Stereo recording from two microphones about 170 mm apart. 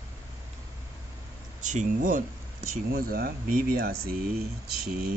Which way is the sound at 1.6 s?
45° right (ahead or behind).